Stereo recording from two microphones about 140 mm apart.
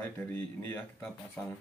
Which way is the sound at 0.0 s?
15° left (ahead or behind).